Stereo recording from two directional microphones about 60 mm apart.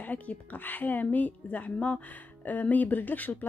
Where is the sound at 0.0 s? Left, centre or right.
Left.